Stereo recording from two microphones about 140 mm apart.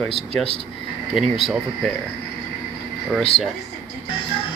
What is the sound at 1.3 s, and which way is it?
Speech, centre (ahead or behind).